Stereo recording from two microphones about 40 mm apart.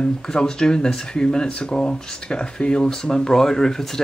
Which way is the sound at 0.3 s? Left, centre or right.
Centre.